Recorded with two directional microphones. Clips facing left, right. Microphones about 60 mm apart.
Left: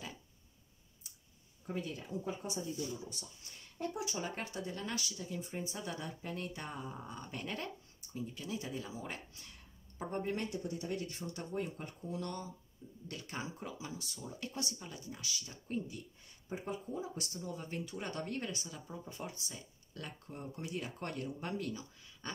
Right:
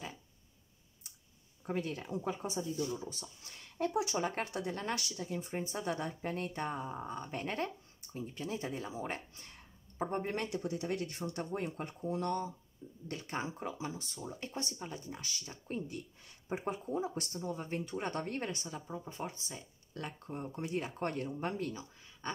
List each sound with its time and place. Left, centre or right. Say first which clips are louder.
1.7 s speech: right 4 dB; right
3.7 s speech: right 6 dB; right
10.3 s speech: right 2 dB; right
18.9 s speech: right 3 dB; right